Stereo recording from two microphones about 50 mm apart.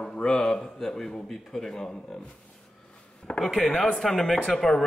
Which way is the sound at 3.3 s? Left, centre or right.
Left.